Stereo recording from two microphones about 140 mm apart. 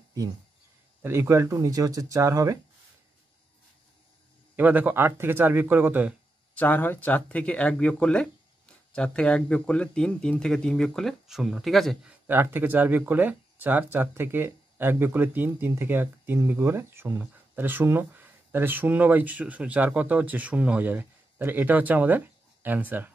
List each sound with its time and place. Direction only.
1.0 s speech: 15° right (ahead or behind)
4.6 s speech: 10° right (ahead or behind)
6.5 s speech: 10° left (ahead or behind)
12.3 s speech: 15° right (ahead or behind)